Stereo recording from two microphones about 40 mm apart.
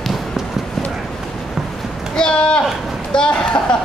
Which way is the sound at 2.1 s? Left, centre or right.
Left.